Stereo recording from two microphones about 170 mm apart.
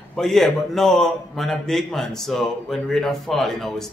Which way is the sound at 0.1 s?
5° left (ahead or behind).